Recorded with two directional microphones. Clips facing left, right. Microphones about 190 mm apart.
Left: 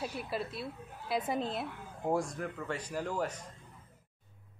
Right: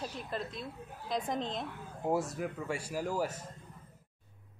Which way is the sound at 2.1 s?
5° right (ahead or behind).